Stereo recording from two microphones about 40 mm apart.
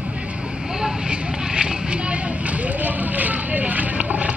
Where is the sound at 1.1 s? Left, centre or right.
Right.